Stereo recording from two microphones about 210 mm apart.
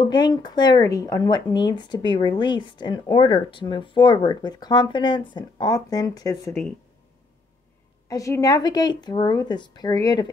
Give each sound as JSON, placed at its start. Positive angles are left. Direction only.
{"t": 0.0, "sound": "a woman's voice", "side_deg": 20}
{"t": 8.1, "sound": "a woman's voice", "side_deg": 15}